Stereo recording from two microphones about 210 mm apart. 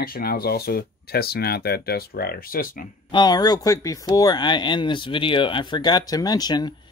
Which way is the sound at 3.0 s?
20° left (ahead or behind).